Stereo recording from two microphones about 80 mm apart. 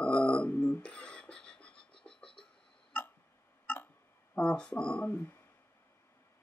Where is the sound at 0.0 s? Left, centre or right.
Centre.